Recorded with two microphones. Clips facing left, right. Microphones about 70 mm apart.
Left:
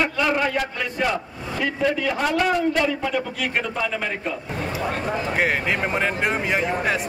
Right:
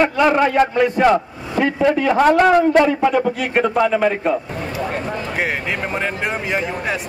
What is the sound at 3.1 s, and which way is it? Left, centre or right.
A man's voice, right.